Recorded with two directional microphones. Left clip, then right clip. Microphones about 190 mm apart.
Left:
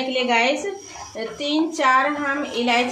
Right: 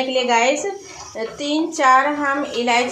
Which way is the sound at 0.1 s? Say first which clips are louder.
Right 2 dB; 15° right (ahead or behind).